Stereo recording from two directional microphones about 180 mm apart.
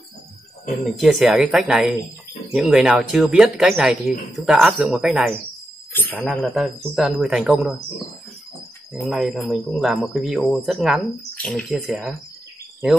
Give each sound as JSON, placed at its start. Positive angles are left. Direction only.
{"t": 0.8, "sound": "speech", "side_deg": 0}
{"t": 5.9, "sound": "speech", "side_deg": 10}
{"t": 6.2, "sound": "speech", "side_deg": 0}
{"t": 9.0, "sound": "speech", "side_deg": 0}